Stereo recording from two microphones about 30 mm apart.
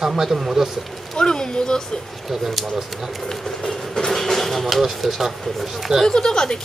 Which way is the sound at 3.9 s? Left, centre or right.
Centre.